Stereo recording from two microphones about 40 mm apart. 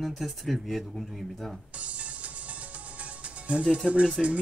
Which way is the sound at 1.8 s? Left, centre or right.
Right.